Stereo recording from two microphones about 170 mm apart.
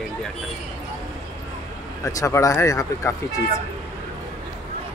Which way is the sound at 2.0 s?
20° left (ahead or behind).